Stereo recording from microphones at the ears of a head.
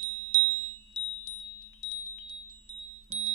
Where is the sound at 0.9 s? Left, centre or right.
Left.